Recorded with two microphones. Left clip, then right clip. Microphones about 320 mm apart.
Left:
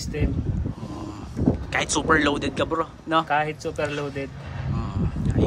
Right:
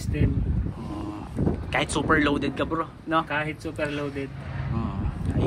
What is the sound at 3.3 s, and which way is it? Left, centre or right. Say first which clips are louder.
Speech: left 5 dB; left.